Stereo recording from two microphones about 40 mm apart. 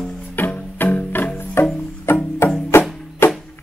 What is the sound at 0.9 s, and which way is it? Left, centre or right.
Music, left.